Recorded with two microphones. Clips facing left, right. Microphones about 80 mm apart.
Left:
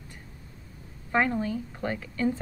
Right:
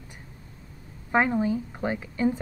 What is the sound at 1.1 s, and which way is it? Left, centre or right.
A woman's voice, centre.